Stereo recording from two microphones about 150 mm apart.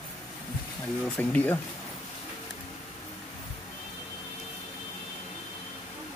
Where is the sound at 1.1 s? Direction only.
10° left (ahead or behind).